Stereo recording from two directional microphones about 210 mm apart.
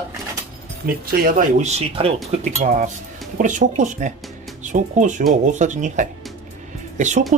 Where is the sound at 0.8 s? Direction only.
45° right (ahead or behind).